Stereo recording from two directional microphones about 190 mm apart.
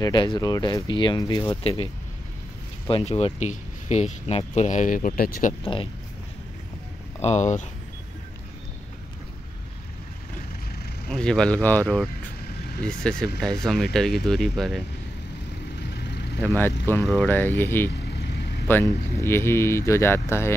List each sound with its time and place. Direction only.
0.0 s speech: 25° left (ahead or behind)
2.9 s speech: 30° left (ahead or behind); by 5.5 s 50° left (ahead or behind)
5.6 s speech: 30° left (ahead or behind)
7.2 s speech: 35° left (ahead or behind)
11.1 s speech: 5° left (ahead or behind)
15.8 s vehicle: 65° left (ahead or behind)
16.3 s speech: 10° left (ahead or behind)